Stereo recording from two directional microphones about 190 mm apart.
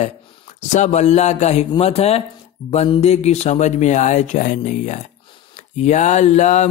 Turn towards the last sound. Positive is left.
turn(degrees=40)  # may be behind; listen again after turning